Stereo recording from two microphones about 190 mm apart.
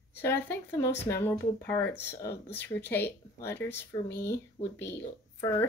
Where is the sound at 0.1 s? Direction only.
10° left (ahead or behind).